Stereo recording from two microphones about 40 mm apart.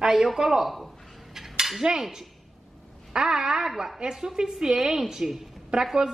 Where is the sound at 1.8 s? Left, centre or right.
Centre.